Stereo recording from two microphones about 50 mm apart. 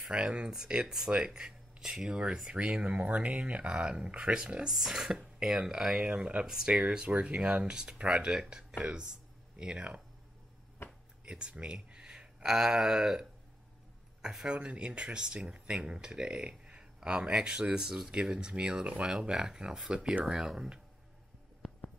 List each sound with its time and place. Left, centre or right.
0.1 s speech: centre
0.5 s speech: centre
6.0 s speech: right
11.2 s speech: centre